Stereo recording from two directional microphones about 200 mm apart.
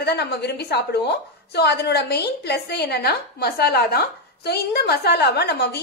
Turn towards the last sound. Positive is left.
turn(degrees=55)  # may be behind; listen again after turning